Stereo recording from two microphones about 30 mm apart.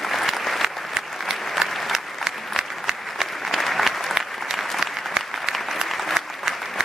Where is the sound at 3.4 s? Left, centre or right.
Centre.